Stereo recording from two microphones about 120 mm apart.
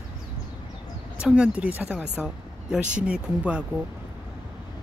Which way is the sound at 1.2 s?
10° right (ahead or behind).